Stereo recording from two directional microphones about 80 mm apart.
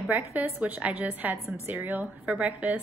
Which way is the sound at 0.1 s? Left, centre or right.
Right.